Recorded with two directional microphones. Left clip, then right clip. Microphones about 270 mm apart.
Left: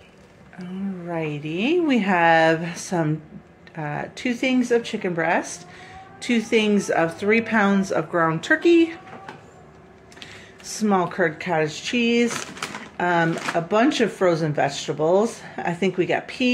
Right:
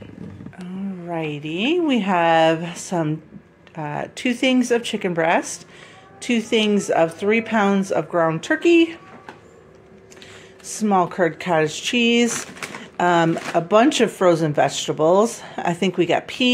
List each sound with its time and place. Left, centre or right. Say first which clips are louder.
1.0 s speech: right 2 dB; centre
10.7 s speech: right 3 dB; centre